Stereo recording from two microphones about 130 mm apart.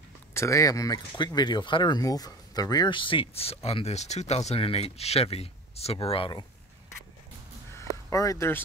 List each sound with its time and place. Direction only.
0.3 s speech: 20° left (ahead or behind); by 6.4 s 45° left (ahead or behind)
8.1 s speech: 25° left (ahead or behind)